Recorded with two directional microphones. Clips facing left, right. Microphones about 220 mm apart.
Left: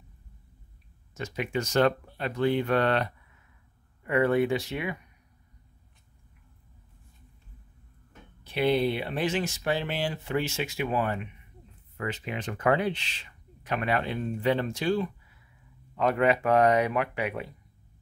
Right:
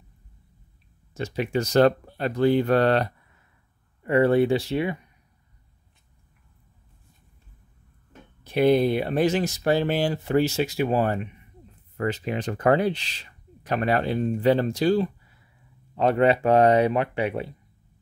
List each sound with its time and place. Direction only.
1.1 s speech: 30° right (ahead or behind)
8.5 s speech: 45° right (ahead or behind); by 17.6 s 30° right (ahead or behind)